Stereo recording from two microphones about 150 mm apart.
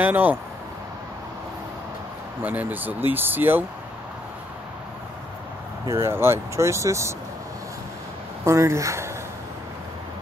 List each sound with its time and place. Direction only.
0.0 s speech: 10° right (ahead or behind)
2.4 s speech: 10° right (ahead or behind)
5.9 s speech: 15° right (ahead or behind)
8.5 s speech: 20° right (ahead or behind)